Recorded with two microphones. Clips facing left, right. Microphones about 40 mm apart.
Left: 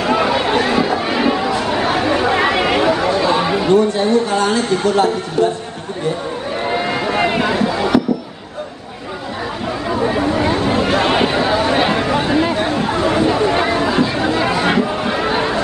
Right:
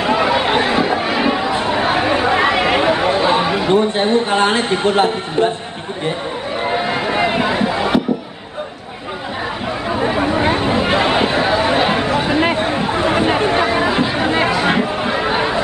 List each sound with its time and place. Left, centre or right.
0.1 s chatter: centre
0.4 s chatter: right
2.9 s chatter: right
3.4 s chatter: centre
3.7 s speech: right
6.6 s run: centre
7.5 s a sound: centre
10.1 s chatter: centre
10.4 s a sound: right
11.1 s a sound: centre
12.1 s chatter: centre
12.5 s chatter: centre
13.5 s chatter: centre
14.5 s chatter: centre